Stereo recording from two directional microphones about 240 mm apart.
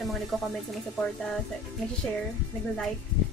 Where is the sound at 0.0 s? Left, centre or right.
Centre.